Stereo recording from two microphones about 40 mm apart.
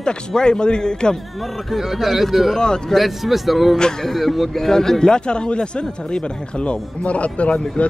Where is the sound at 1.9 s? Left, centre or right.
Centre.